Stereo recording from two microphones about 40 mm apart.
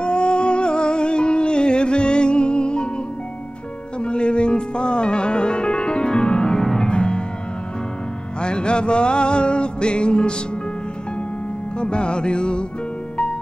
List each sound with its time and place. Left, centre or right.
0.0 s music: left
4.0 s music: left
8.4 s music: left
11.8 s music: left